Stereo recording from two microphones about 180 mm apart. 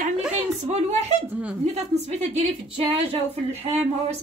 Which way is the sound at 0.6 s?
35° right (ahead or behind).